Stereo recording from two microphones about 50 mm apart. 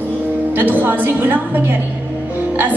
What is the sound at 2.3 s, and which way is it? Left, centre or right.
Music, right.